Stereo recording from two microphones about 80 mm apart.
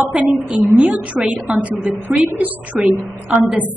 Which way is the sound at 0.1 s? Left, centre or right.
Centre.